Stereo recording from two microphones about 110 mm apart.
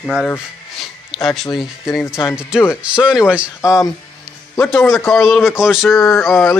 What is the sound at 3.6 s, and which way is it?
Speech, 30° left (ahead or behind).